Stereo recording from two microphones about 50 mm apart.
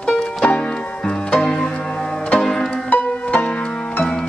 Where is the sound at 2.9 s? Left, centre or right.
Left.